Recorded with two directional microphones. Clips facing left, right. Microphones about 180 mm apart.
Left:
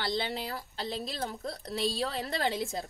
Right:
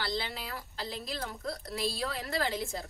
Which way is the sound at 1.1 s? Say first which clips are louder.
Left 1 dB; 30° left (ahead or behind).